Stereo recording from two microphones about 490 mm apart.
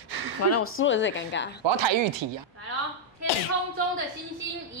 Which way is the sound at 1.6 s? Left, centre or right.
Right.